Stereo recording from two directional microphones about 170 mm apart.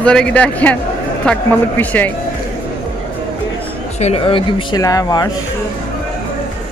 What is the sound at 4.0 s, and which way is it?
Speech, 35° left (ahead or behind).